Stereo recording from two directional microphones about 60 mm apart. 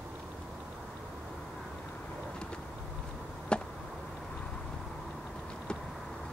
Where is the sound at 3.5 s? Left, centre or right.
Centre.